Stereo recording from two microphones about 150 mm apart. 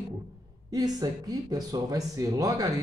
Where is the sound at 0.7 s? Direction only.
25° right (ahead or behind).